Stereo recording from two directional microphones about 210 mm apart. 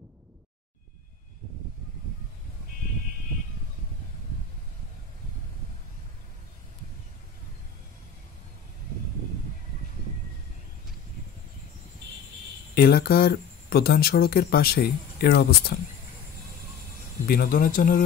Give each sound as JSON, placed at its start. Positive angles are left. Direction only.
{"t": 12.7, "sound": "speech", "side_deg": 45}
{"t": 17.3, "sound": "speech", "side_deg": 45}